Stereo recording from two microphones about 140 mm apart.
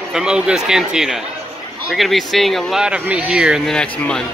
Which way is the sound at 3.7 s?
5° left (ahead or behind).